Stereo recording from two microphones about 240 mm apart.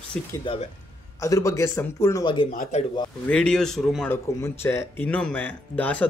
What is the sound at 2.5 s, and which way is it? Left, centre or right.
Speech, left.